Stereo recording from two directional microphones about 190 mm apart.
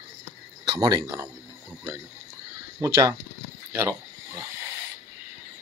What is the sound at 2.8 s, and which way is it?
Speech, 15° right (ahead or behind).